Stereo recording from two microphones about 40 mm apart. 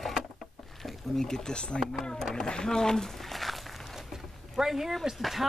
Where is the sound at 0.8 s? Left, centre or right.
Centre.